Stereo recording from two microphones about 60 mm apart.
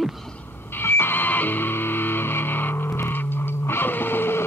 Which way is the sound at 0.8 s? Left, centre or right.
Left.